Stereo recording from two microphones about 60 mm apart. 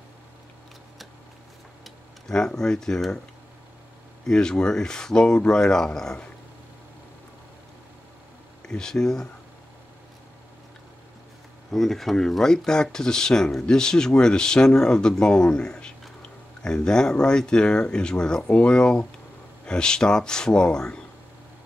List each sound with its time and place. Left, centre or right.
1.9 s speech: centre
4.3 s speech: centre
8.6 s speech: centre
11.7 s speech: centre